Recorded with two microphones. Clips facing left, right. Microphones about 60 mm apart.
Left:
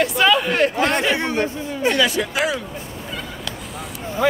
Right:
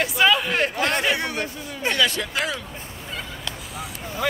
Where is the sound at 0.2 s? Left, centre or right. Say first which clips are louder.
Left 2 dB; centre.